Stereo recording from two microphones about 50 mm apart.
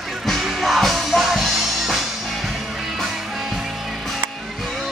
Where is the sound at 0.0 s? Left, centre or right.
Centre.